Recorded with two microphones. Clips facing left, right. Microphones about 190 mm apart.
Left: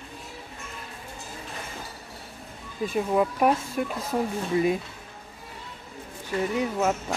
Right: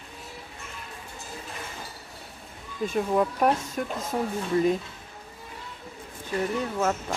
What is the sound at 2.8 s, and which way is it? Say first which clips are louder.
Speech: even; 5° left (ahead or behind).